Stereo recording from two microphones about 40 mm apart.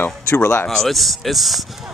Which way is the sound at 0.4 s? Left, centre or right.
Left.